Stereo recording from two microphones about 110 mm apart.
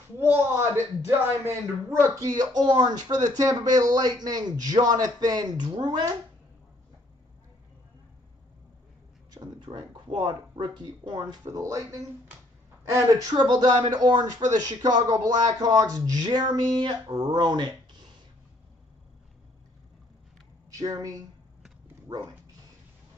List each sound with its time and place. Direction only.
0.2 s a man's voice: 20° right (ahead or behind); by 6.0 s 45° right (ahead or behind)
9.3 s a man's voice: 40° right (ahead or behind)
20.8 s a man's voice: 30° right (ahead or behind)
22.0 s dog: 40° right (ahead or behind)